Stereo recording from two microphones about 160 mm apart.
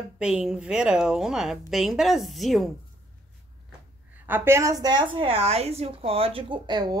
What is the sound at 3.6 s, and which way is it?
A woman's voice, 10° right (ahead or behind).